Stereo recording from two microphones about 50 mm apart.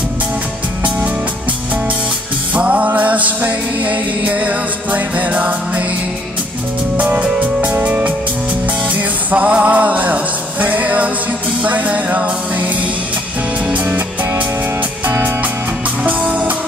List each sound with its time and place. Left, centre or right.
2.5 s music: right
7.2 s music: right
9.3 s music: right
16.0 s music: right